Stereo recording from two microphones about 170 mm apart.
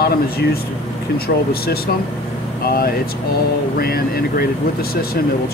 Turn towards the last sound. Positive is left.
turn(degrees=65)  # may be behind; listen again after turning